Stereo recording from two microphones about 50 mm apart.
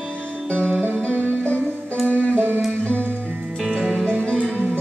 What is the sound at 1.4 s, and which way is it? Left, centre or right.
Music, left.